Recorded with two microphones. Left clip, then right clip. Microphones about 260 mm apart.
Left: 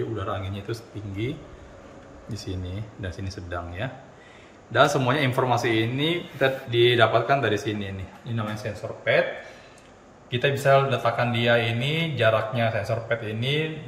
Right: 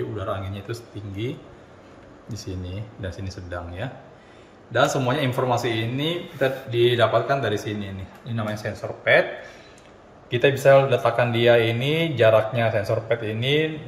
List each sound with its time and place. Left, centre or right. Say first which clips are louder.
0.2 s speech: right 2 dB; centre
10.3 s speech: right 4 dB; centre